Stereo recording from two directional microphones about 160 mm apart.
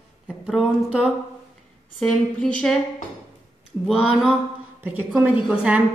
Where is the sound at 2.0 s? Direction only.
5° left (ahead or behind).